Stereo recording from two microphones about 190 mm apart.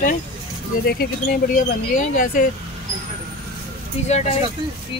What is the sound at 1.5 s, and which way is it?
Speech, 45° left (ahead or behind).